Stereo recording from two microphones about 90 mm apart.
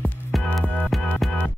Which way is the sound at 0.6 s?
15° left (ahead or behind).